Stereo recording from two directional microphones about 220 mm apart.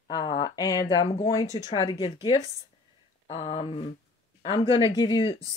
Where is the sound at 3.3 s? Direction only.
25° left (ahead or behind).